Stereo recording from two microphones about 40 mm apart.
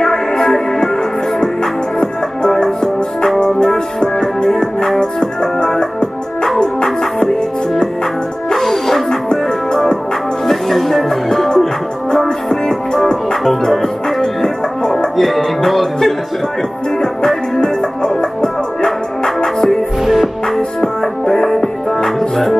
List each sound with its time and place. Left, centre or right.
0.0 s music: centre
8.5 s music: centre
9.3 s music: left
10.4 s music: centre
13.4 s music: centre
14.2 s music: centre
15.1 s music: centre
20.1 s music: centre
21.4 s music: centre